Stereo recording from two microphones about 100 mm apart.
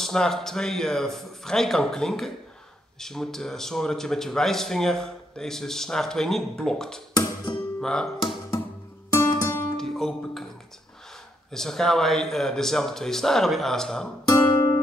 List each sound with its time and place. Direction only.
0.0 s speech: 5° left (ahead or behind)
9.1 s music: 30° left (ahead or behind)
9.8 s music: 5° left (ahead or behind)
11.5 s speech: 5° left (ahead or behind)
14.2 s music: 40° left (ahead or behind)